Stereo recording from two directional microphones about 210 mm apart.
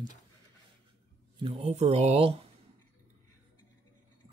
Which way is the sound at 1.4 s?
30° right (ahead or behind).